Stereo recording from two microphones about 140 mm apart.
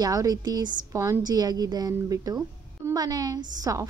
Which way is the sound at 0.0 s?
25° right (ahead or behind).